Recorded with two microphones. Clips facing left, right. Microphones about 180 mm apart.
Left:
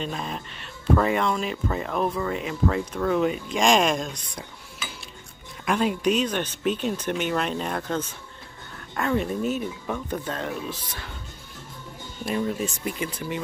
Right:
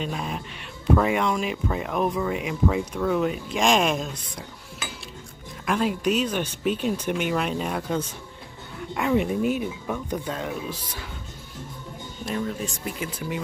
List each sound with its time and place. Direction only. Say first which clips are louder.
0.0 s speech: right 1 dB; 10° right (ahead or behind)
5.7 s speech: left 1 dB; centre (ahead or behind)
12.4 s speech: left 3 dB; 5° left (ahead or behind)